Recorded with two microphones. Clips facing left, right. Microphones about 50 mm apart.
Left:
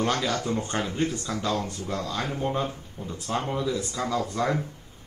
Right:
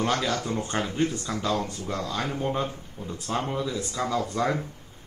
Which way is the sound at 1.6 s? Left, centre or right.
Right.